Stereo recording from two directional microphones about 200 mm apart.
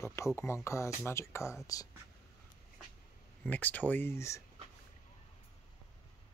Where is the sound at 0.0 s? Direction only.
15° left (ahead or behind).